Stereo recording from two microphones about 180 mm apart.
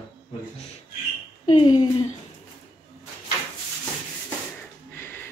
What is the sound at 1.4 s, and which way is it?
Speech, 30° left (ahead or behind).